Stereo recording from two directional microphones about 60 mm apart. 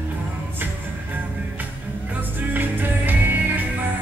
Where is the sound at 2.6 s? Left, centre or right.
Right.